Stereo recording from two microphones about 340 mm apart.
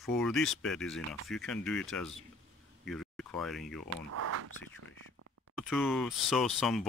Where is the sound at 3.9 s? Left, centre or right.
Right.